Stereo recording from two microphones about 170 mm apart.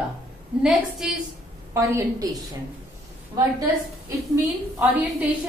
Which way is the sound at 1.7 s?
15° right (ahead or behind).